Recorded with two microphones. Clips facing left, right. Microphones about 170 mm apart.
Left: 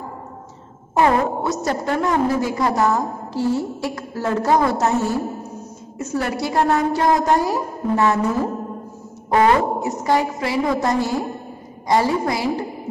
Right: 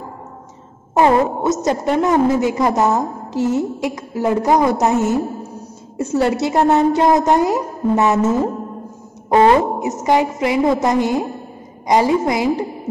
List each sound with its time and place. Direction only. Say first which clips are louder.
0.9 s a woman's voice: right 3 dB; 20° right (ahead or behind)